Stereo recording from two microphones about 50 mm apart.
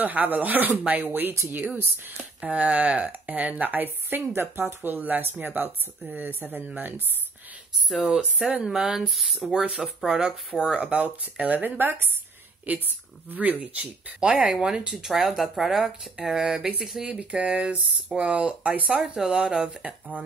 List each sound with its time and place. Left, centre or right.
0.0 s a woman's voice: right
2.4 s a woman's voice: right
4.3 s a woman's voice: right
7.9 s speech: centre
8.5 s speech: right
9.1 s speech: centre
9.5 s speech: right
10.7 s speech: right
11.8 s speech: right; by 20.0 s centre